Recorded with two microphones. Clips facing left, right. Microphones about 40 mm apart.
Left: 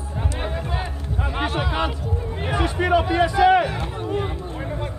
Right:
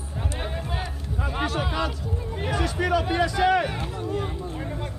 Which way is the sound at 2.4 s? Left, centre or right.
Left.